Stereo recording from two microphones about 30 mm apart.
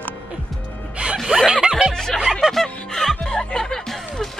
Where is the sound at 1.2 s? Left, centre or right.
Centre.